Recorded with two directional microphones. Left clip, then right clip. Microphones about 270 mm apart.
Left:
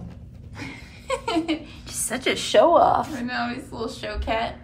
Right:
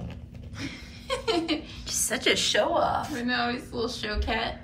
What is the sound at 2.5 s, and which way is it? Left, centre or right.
Speech, centre.